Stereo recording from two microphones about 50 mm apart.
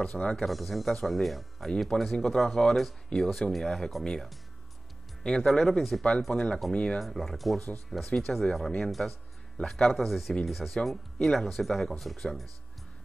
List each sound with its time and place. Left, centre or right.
0.0 s speech: centre
0.5 s speech: centre
1.9 s speech: centre
6.3 s speech: centre
7.0 s speech: centre